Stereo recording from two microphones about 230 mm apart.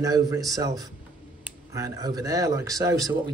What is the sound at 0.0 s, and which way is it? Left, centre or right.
Speech, centre.